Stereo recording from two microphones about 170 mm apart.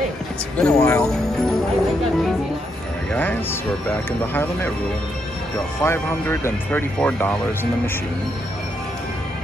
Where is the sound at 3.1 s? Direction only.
10° left (ahead or behind).